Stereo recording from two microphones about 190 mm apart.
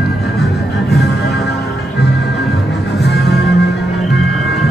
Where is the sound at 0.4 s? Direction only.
60° left (ahead or behind).